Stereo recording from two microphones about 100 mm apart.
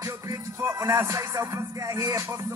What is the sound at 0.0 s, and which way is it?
Music, 25° right (ahead or behind).